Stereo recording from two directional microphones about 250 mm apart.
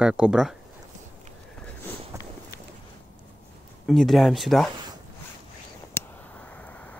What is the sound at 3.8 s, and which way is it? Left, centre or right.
Speech, centre.